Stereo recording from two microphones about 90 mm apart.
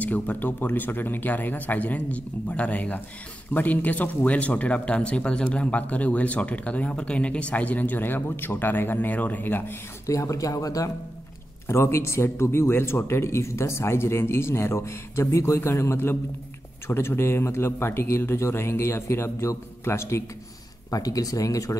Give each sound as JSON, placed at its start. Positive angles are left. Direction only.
{"t": 0.0, "sound": "speech", "side_deg": 20}
{"t": 10.0, "sound": "speech", "side_deg": 35}
{"t": 11.6, "sound": "speech", "side_deg": 30}
{"t": 20.9, "sound": "speech", "side_deg": 40}